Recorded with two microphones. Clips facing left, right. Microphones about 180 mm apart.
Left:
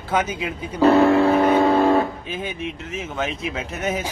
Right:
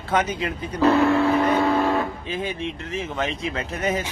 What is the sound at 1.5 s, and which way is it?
Music, 30° left (ahead or behind).